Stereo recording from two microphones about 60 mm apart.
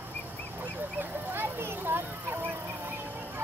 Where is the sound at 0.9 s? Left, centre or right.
Right.